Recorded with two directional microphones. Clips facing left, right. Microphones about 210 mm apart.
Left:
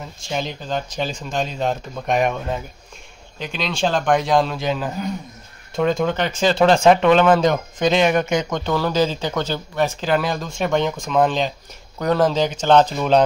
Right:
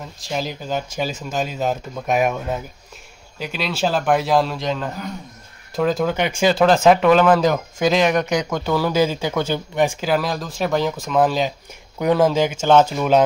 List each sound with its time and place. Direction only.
0.0 s speech: centre (ahead or behind)